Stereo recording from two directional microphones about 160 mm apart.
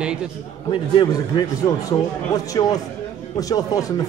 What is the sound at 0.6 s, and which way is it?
A man's voice, 30° left (ahead or behind).